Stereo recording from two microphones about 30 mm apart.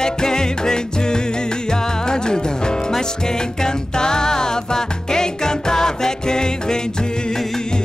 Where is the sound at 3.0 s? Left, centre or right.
Left.